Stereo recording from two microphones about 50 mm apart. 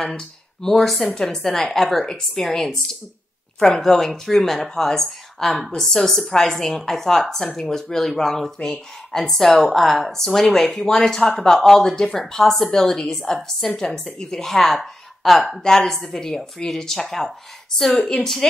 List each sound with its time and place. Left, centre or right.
0.1 s a woman's voice: centre